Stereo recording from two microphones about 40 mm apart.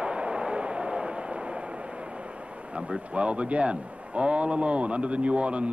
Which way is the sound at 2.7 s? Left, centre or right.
Right.